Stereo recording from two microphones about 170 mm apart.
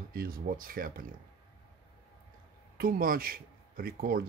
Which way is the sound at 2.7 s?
60° right (ahead or behind).